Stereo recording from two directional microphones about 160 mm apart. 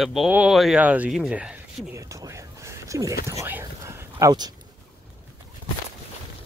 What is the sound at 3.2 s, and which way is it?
Speech, 15° right (ahead or behind).